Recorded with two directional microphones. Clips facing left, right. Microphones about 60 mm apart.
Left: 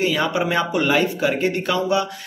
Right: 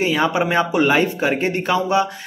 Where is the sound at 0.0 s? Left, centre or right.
Right.